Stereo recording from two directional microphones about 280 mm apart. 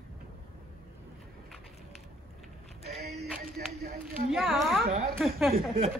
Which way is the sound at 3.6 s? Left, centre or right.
Right.